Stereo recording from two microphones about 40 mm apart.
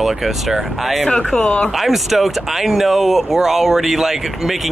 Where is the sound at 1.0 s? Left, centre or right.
Left.